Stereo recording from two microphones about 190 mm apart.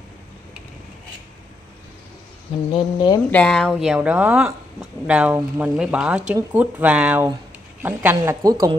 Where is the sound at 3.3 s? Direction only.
5° left (ahead or behind).